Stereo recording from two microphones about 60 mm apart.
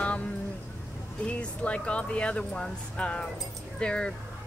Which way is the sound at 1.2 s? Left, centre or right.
Left.